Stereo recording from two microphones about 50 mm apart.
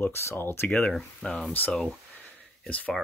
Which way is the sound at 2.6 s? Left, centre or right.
Left.